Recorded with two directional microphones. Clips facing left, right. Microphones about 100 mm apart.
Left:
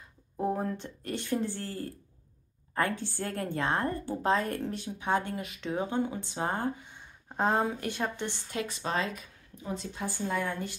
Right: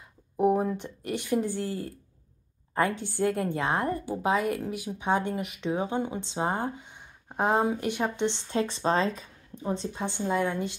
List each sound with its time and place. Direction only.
0.4 s a woman's voice: 15° right (ahead or behind)